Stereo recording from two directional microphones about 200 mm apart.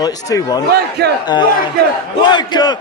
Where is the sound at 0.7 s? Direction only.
55° right (ahead or behind).